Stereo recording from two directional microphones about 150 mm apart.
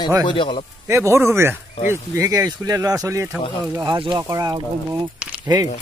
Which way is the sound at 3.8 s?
30° right (ahead or behind).